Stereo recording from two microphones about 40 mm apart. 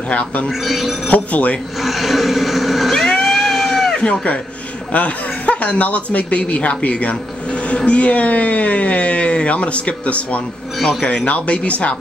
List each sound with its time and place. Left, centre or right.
0.1 s speech: left
0.5 s speech: centre
1.0 s speech: left
1.8 s speech: centre
3.1 s vehicle: centre
3.3 s sheep: centre
4.0 s speech: left
10.8 s a man's voice: centre
11.1 s speech: left